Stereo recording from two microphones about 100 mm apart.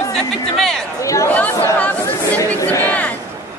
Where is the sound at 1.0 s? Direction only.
35° left (ahead or behind).